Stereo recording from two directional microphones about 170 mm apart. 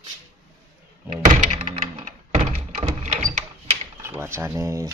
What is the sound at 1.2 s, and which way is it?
Thunk, 45° right (ahead or behind).